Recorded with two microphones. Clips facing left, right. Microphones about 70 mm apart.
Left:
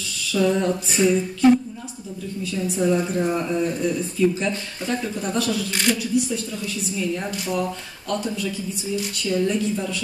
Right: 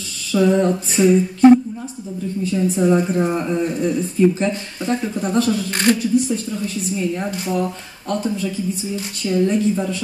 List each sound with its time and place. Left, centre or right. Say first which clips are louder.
0.3 s a sound: right 5 dB; right
2.4 s speech: right 5 dB; right
5.7 s speech: right 6 dB; right